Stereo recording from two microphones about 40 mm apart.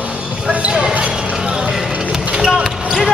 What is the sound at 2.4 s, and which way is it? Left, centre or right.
Basketball bounce, centre.